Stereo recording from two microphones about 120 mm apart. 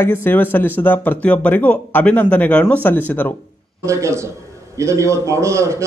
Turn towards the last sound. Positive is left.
turn(degrees=-25)  # may be behind; listen again after turning